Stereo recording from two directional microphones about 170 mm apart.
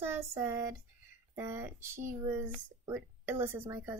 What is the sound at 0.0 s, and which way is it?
Speech, 15° right (ahead or behind).